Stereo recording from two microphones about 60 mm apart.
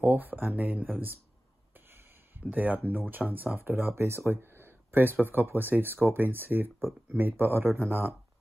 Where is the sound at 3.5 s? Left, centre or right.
Right.